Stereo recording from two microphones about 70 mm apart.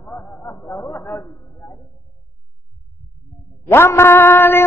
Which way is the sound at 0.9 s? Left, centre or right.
Left.